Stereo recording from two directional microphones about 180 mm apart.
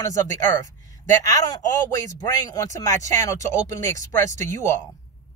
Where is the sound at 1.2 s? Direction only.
20° left (ahead or behind).